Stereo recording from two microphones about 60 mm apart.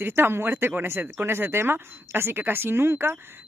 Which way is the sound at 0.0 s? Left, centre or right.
Right.